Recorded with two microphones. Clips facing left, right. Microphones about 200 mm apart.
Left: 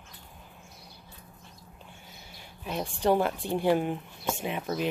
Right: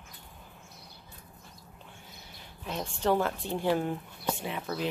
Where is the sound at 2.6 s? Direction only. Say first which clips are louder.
Left 3 dB; 15° left (ahead or behind).